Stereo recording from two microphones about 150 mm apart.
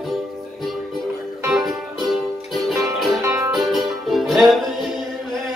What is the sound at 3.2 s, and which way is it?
Music, 20° right (ahead or behind).